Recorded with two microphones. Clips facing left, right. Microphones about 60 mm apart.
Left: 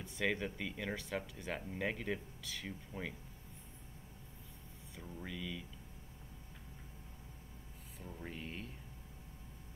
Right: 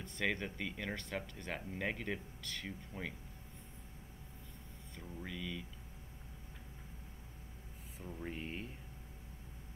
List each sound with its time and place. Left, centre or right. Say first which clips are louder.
0.0 s speech: left 1 dB; centre
4.9 s speech: even; centre
8.0 s speech: right 3 dB; centre
8.4 s speech: right 2 dB; centre